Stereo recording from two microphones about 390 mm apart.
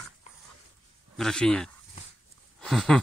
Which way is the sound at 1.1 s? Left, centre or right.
Centre.